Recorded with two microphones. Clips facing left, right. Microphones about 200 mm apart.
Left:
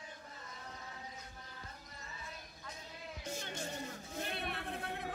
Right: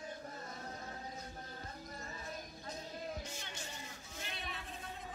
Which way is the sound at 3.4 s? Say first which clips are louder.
Left 6 dB; 55° left (ahead or behind).